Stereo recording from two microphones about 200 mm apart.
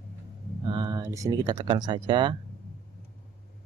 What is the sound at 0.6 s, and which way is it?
Speech, 20° right (ahead or behind).